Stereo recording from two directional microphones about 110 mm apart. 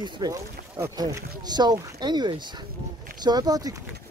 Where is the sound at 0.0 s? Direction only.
40° right (ahead or behind).